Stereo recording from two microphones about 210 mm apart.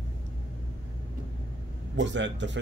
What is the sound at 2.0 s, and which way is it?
Speech, 60° right (ahead or behind).